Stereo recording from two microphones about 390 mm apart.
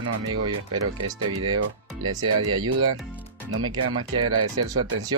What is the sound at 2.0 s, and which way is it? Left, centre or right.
Speech, right.